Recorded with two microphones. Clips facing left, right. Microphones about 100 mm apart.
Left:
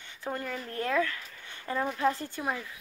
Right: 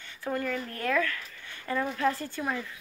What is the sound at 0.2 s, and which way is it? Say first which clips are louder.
Speech: right 4 dB; 20° left (ahead or behind).